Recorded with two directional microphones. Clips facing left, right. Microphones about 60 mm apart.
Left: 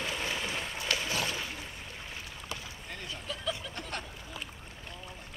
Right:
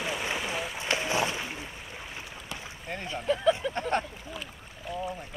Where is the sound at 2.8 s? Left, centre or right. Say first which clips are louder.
Right 12 dB; right.